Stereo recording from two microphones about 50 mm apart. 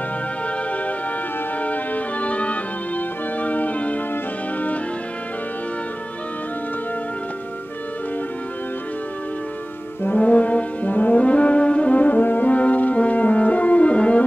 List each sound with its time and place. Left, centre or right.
1.6 s music: left
10.0 s brass instrument: left